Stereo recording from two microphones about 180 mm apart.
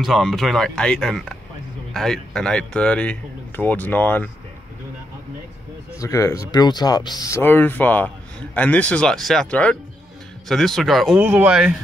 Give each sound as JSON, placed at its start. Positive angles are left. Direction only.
{"t": 0.0, "sound": "speech", "side_deg": 0}
{"t": 5.9, "sound": "speech", "side_deg": 15}